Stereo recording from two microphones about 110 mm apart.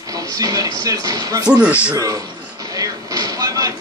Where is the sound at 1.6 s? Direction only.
10° right (ahead or behind).